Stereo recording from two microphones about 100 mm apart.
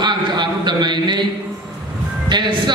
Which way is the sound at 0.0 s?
50° right (ahead or behind).